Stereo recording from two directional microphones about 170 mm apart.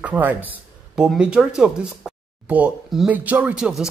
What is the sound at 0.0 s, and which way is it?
A man's voice, 10° right (ahead or behind).